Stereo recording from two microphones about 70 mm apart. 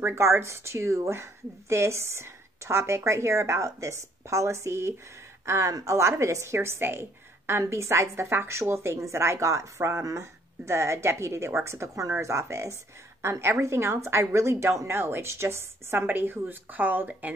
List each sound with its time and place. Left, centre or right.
0.0 s a woman's voice: right